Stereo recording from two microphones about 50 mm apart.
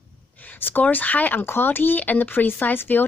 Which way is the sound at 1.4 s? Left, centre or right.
Left.